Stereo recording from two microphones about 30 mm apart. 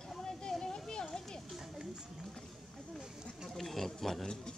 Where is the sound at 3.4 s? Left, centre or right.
Centre.